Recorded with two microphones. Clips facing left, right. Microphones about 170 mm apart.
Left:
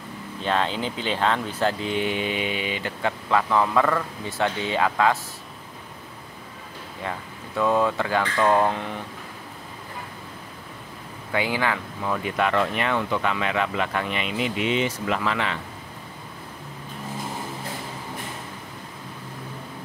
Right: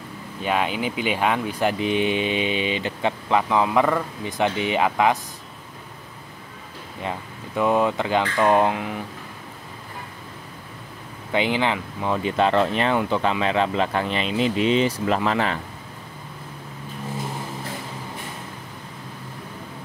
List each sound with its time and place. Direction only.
0.4 s speech: 10° right (ahead or behind)
7.0 s speech: 20° right (ahead or behind)
8.7 s speech: 5° right (ahead or behind)
11.3 s speech: 20° right (ahead or behind); by 15.6 s 35° right (ahead or behind)